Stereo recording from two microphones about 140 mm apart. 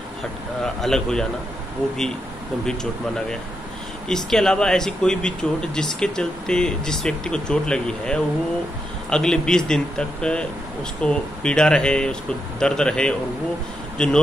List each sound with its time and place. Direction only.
0.6 s speech: 5° left (ahead or behind)
2.6 s a man's voice: 5° left (ahead or behind)